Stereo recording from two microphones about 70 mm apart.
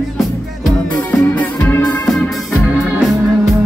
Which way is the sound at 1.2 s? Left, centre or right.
Left.